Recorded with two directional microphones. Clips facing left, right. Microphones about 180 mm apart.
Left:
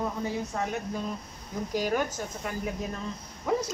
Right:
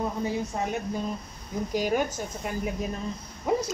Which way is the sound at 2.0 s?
10° right (ahead or behind).